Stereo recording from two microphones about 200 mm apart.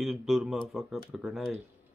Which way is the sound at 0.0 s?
Centre (ahead or behind).